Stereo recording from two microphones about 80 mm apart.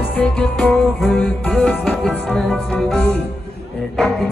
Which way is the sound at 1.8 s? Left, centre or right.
Centre.